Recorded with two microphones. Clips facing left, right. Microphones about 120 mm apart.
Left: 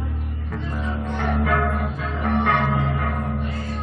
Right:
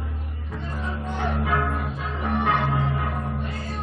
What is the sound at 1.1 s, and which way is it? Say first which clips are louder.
Music: left 3 dB; 70° left (ahead or behind).